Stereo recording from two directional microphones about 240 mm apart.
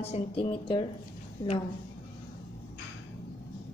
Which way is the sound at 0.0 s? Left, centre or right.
Left.